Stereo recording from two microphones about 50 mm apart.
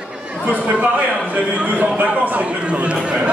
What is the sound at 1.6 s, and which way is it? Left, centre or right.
Speech, right.